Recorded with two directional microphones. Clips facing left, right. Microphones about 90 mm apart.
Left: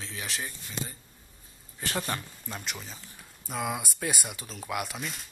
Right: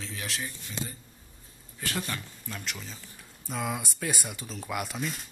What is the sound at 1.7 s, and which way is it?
Speech, 30° left (ahead or behind).